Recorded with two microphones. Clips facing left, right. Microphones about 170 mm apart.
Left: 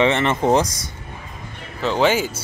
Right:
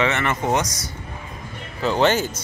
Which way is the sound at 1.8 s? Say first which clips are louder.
Left 1 dB; centre (ahead or behind).